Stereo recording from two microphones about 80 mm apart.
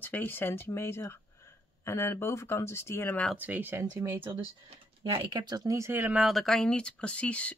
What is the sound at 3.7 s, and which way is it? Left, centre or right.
Speech, right.